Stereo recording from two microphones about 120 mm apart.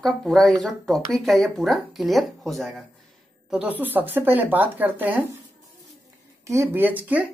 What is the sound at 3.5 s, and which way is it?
Speech, 10° right (ahead or behind).